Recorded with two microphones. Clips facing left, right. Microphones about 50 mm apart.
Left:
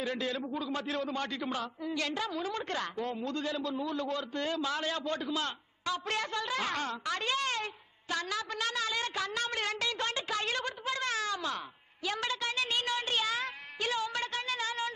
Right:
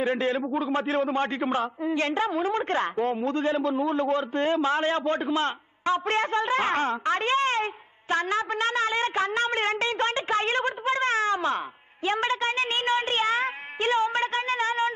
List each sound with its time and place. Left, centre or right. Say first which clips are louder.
0.0 s a man's voice: right 9 dB; right